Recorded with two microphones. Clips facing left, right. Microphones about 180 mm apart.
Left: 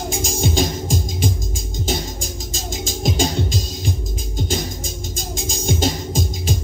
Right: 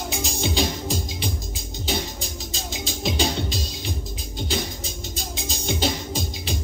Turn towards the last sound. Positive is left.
turn(degrees=45)  # may be behind; listen again after turning